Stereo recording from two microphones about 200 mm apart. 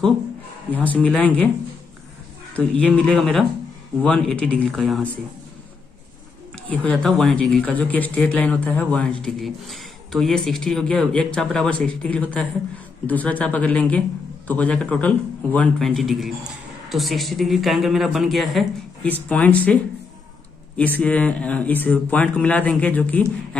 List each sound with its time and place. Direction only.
0.7 s speech: 5° left (ahead or behind)
2.5 s speech: 5° left (ahead or behind)
6.7 s speech: 5° left (ahead or behind)